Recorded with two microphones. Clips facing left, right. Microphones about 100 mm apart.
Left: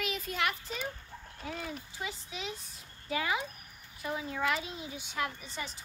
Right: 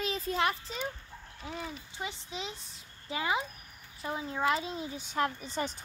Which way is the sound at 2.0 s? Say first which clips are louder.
Right 4 dB; 25° right (ahead or behind).